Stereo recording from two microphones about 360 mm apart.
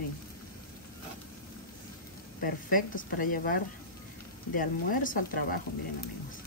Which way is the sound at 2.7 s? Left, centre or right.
Left.